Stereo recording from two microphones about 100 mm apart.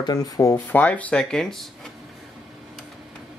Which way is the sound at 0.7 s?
15° left (ahead or behind).